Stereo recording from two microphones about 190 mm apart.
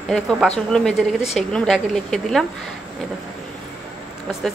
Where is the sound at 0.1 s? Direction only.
Centre (ahead or behind).